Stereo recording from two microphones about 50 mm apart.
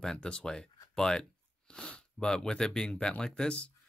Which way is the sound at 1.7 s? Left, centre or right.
Centre.